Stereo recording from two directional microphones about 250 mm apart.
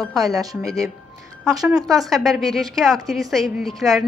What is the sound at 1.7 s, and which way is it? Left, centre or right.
A woman's voice, centre.